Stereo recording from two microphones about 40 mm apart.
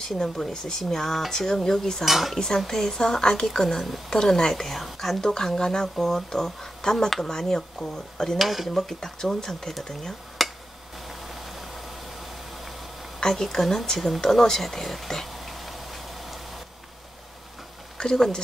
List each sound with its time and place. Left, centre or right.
0.0 s speech: centre
2.0 s speech: centre
2.3 s speech: centre
5.6 s speech: centre
8.4 s speech: centre
8.6 s speech: centre
11.1 s vehicle: centre
13.2 s speech: centre
14.2 s tick-tock: centre
17.9 s speech: centre